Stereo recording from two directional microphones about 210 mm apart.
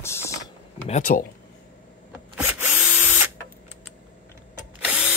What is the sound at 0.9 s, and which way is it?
Speech, 40° left (ahead or behind).